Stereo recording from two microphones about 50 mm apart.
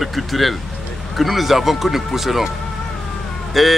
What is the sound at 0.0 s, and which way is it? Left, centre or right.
Speech, centre.